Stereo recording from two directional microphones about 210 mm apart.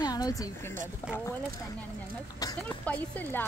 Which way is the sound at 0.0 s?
20° left (ahead or behind).